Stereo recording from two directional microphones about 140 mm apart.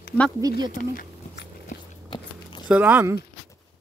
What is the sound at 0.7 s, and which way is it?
Speech, 70° left (ahead or behind).